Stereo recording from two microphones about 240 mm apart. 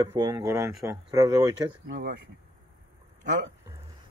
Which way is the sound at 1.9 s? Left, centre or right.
Right.